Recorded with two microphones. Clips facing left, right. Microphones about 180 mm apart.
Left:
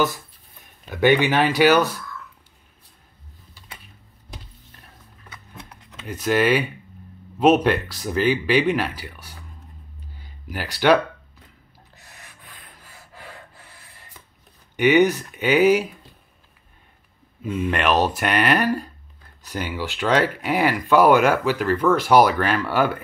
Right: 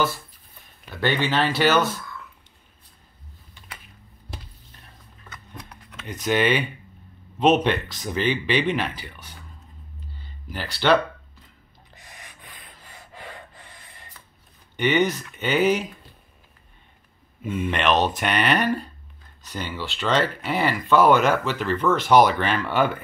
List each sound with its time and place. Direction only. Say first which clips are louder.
0.8 s speech: left 6 dB; 15° left (ahead or behind)
5.6 s a sound: left 1 dB; 20° left (ahead or behind)
6.0 s speech: left 2 dB; 5° left (ahead or behind)
10.1 s music: left 2 dB; 10° left (ahead or behind)
12.8 s gasp: right 3 dB; 5° left (ahead or behind)
14.8 s speech: left 5 dB; 10° left (ahead or behind)
17.4 s speech: left 2 dB; centre (ahead or behind)